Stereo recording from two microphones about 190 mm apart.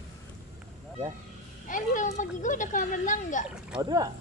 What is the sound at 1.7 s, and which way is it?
Speech, 40° left (ahead or behind).